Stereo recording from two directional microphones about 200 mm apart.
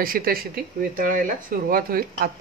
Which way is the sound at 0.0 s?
45° right (ahead or behind).